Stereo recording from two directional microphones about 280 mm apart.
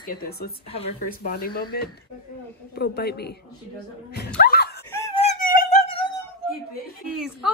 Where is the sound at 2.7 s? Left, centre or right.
Left.